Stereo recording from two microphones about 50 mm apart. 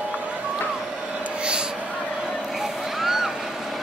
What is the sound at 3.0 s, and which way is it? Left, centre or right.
Vehicle, centre.